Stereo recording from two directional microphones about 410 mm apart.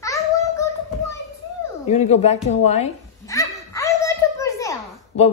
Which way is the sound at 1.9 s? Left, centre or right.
Centre.